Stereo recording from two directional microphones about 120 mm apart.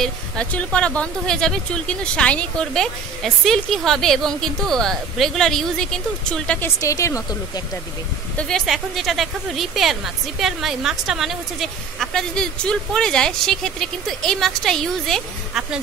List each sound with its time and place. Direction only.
0.0 s speech: 10° left (ahead or behind)
6.8 s speech: 25° left (ahead or behind)
8.4 s speech: 5° left (ahead or behind)